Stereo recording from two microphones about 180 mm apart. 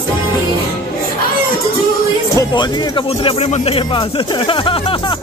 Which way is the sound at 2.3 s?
25° left (ahead or behind).